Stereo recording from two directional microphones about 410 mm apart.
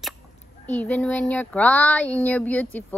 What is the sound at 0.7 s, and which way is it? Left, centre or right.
Speech, centre.